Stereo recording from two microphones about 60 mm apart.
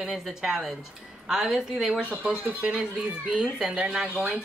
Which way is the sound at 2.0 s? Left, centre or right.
Right.